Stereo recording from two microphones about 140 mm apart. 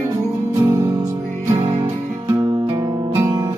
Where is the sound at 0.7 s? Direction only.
20° right (ahead or behind).